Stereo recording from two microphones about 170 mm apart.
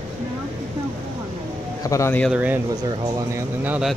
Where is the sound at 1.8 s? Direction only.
20° left (ahead or behind).